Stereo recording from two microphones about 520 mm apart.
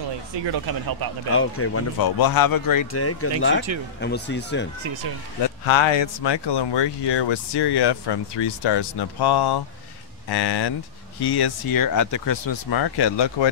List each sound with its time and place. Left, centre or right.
0.5 s speech: right
1.3 s speech: left
2.1 s speech: left; by 4.6 s centre
5.7 s speech: left
12.4 s speech: left